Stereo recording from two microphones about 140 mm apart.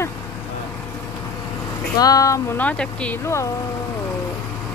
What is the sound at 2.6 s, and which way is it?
Speech, 10° left (ahead or behind).